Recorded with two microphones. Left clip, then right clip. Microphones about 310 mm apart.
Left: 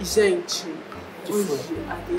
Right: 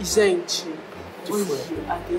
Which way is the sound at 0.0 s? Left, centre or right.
Centre.